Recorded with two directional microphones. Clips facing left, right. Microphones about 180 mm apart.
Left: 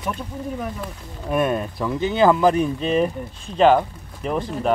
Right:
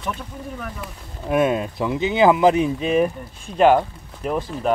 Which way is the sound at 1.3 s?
15° right (ahead or behind).